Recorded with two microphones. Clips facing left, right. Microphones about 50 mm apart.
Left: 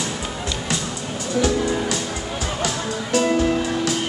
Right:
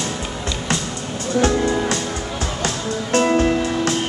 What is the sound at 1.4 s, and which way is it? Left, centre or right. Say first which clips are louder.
Music: right 3 dB; right.